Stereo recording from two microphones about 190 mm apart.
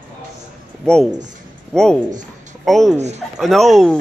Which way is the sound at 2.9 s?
35° right (ahead or behind).